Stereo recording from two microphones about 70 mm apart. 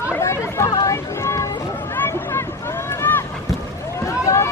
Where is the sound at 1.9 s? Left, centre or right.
Left.